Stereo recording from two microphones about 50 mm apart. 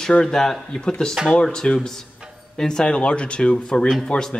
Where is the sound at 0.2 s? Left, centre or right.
Centre.